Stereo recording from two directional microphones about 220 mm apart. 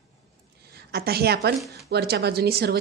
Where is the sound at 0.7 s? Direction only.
45° right (ahead or behind).